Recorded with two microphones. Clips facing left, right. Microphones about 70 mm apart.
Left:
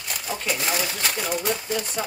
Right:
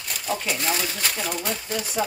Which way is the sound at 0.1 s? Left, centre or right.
Centre.